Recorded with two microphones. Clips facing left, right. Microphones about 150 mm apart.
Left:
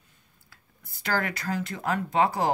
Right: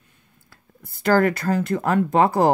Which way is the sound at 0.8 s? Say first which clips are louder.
Right 11 dB; 50° right (ahead or behind).